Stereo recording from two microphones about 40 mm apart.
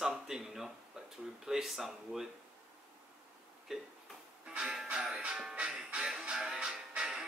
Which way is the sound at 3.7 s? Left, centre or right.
Centre.